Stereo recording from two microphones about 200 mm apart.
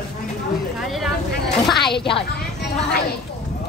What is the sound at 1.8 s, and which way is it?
Speech, 25° left (ahead or behind).